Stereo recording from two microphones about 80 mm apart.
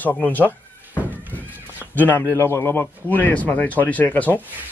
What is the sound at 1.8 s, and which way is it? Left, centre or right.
Speech, left.